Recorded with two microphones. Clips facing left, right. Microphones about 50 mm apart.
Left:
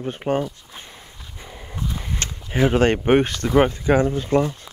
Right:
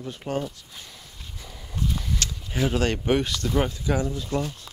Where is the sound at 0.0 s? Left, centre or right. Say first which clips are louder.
Left 6 dB; left.